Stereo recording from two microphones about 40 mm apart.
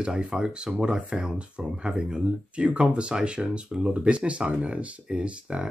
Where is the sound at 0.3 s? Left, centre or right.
Right.